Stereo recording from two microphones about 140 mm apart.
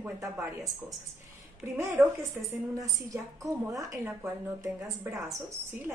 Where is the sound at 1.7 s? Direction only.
20° right (ahead or behind).